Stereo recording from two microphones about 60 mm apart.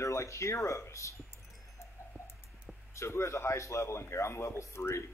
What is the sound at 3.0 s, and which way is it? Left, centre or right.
A man's voice, left.